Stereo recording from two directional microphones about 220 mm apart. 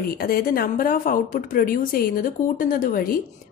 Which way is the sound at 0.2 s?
40° left (ahead or behind).